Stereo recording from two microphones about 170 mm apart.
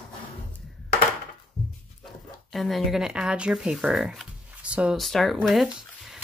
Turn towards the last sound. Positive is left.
turn(degrees=0)  # may be behind; listen again after turning